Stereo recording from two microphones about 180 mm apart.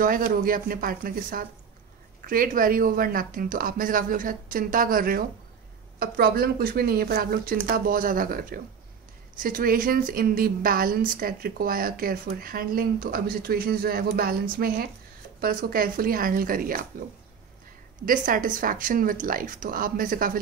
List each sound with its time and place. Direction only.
0.0 s a woman's voice: 50° right (ahead or behind)
18.0 s a woman's voice: 50° right (ahead or behind)